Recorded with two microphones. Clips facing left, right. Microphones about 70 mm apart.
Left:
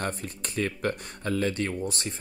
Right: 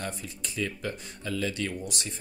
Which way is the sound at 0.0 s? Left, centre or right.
Left.